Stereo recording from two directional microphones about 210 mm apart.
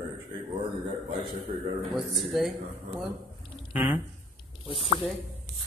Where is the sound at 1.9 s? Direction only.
Centre (ahead or behind).